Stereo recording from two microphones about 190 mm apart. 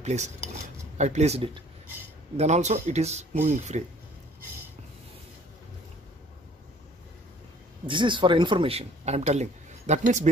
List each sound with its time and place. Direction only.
0.0 s cutlery: 35° right (ahead or behind)
0.9 s speech: 35° right (ahead or behind)
7.8 s speech: 25° right (ahead or behind)